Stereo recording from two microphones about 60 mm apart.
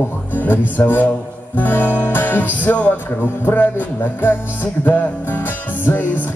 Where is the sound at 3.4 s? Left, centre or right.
Left.